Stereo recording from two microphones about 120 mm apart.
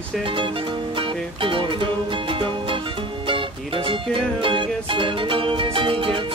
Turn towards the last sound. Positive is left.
turn(degrees=-45)  # may be behind; listen again after turning